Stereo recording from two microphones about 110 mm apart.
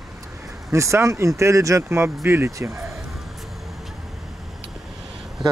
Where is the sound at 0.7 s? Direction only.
25° right (ahead or behind).